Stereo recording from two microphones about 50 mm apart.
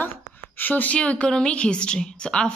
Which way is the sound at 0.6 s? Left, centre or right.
Left.